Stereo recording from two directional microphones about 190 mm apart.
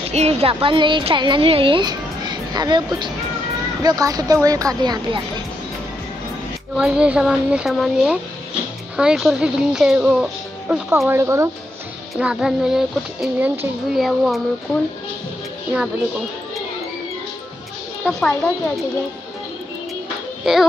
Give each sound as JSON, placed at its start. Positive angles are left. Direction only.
{"t": 0.0, "sound": "a woman's voice", "side_deg": -35}
{"t": 6.8, "sound": "speech", "side_deg": -5}
{"t": 12.2, "sound": "speech", "side_deg": -5}
{"t": 18.0, "sound": "speech", "side_deg": 5}
{"t": 20.5, "sound": "speech", "side_deg": 0}